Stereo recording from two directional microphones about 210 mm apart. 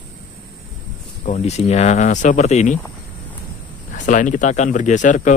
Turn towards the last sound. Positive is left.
turn(degrees=35)  # may be behind; listen again after turning